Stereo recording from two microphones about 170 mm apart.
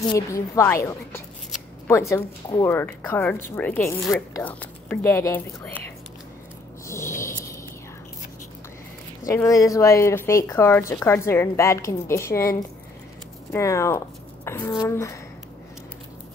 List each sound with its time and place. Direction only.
0.1 s a woman's voice: 15° left (ahead or behind)
1.9 s a woman's voice: 15° left (ahead or behind)
6.9 s a sound: 15° left (ahead or behind)
9.2 s a woman's voice: 15° left (ahead or behind)